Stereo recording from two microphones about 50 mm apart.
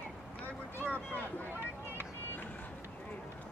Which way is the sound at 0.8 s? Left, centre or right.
Left.